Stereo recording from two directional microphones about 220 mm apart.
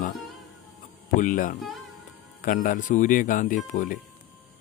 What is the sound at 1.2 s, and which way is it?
Speech, 35° left (ahead or behind).